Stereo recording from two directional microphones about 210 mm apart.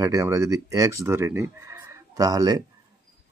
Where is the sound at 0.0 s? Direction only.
15° right (ahead or behind).